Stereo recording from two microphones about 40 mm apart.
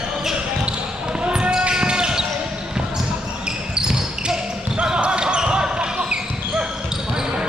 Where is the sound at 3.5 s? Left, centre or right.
Centre.